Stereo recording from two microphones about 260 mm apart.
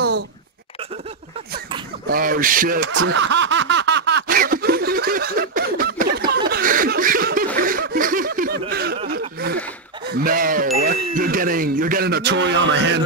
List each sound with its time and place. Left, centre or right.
2.0 s speech: right
2.9 s snicker: right
10.1 s ding: right
11.1 s speech: right